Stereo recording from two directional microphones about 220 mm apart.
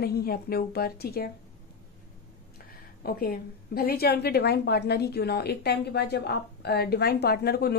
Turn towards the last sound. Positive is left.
turn(degrees=45)  # may be behind; listen again after turning